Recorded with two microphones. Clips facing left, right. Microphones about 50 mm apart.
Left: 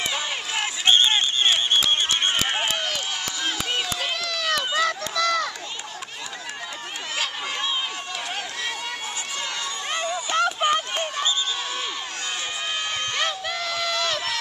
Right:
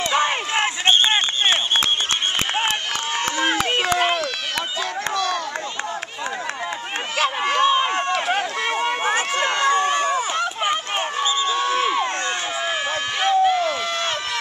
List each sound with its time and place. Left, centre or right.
0.8 s run: right
3.3 s crowd: right
7.2 s run: right
7.6 s run: right
9.0 s run: right
10.3 s a sound: centre
11.0 s run: right
11.6 s crowd: right
13.3 s run: right